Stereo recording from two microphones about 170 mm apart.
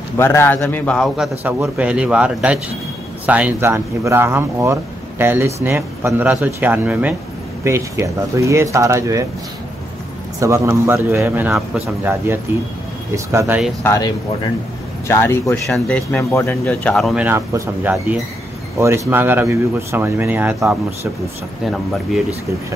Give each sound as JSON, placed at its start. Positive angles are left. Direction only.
{"t": 0.2, "sound": "a man's voice", "side_deg": 15}
{"t": 10.4, "sound": "speech", "side_deg": -15}
{"t": 13.8, "sound": "a man's voice", "side_deg": 20}
{"t": 15.7, "sound": "speech", "side_deg": 5}
{"t": 16.2, "sound": "a man's voice", "side_deg": 15}
{"t": 16.6, "sound": "speech", "side_deg": 5}